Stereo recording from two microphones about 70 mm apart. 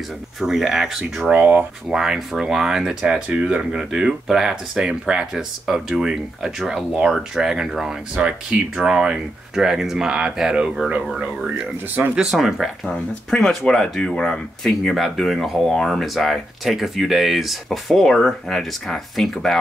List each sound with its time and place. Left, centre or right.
0.4 s speech: centre
1.3 s speech: right
1.9 s speech: centre
11.1 s speech: right
12.2 s speech: centre